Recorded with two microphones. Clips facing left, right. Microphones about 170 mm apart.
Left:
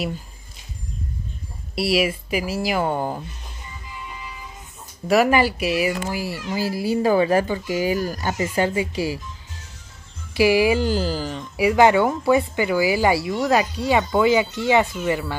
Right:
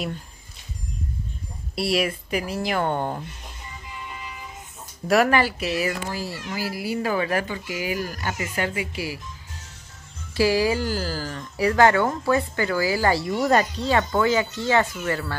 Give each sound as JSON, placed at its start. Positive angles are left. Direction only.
{"t": 1.8, "sound": "speech", "side_deg": 5}
{"t": 5.0, "sound": "speech", "side_deg": 0}
{"t": 5.3, "sound": "speech", "side_deg": 15}
{"t": 6.5, "sound": "speech", "side_deg": 25}
{"t": 10.3, "sound": "speech", "side_deg": 15}
{"t": 13.2, "sound": "speech", "side_deg": 0}